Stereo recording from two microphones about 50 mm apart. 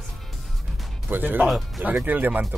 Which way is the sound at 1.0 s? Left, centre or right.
Right.